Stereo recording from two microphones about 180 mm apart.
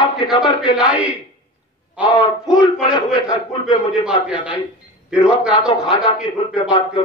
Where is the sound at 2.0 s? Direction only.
25° left (ahead or behind).